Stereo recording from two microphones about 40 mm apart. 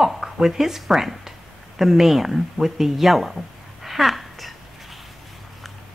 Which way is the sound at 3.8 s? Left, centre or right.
Centre.